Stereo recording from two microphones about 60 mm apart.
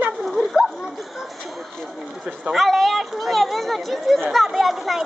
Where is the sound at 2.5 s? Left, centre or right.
Centre.